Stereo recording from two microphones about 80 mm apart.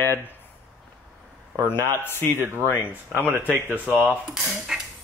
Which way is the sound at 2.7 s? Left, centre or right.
Left.